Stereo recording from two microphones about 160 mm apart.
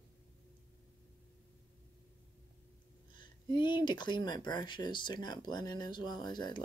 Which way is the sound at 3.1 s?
30° left (ahead or behind).